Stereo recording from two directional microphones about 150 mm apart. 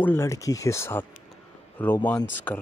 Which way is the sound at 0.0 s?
15° left (ahead or behind).